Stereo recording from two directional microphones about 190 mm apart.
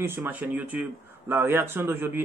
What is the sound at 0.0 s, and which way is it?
Speech, 10° right (ahead or behind).